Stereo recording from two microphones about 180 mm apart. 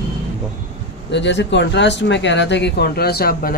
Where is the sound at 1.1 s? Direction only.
75° left (ahead or behind).